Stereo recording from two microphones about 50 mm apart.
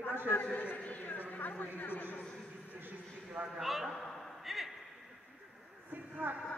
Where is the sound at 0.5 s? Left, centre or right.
Left.